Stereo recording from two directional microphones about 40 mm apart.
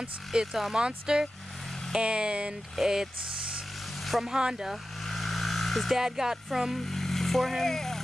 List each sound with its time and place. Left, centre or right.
0.3 s music: centre
0.7 s speech: centre
2.7 s music: centre
4.0 s a sound: centre
4.3 s music: centre
5.0 s vehicle: centre
5.9 s music: centre
6.8 s speech: centre